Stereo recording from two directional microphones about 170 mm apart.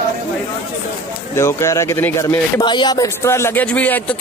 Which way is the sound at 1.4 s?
15° left (ahead or behind).